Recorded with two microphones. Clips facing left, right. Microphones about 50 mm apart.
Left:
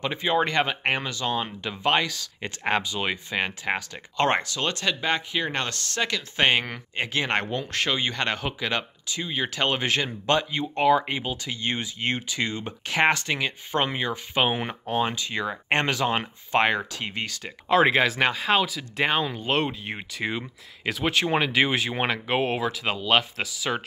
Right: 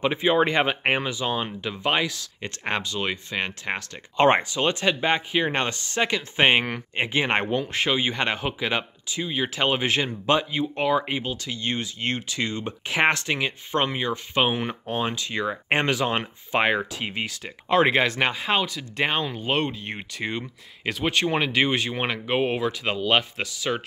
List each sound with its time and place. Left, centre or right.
0.0 s speech: centre
4.2 s speech: centre
11.4 s speech: centre